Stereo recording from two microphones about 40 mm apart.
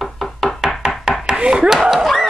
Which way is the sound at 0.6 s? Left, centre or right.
Centre.